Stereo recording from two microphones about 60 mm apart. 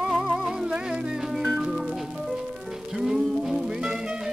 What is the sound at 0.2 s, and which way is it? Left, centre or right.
Music, centre.